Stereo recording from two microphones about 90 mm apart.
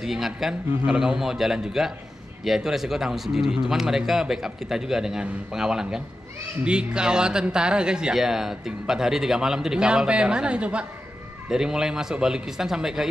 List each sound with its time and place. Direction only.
0.0 s speech: 5° right (ahead or behind)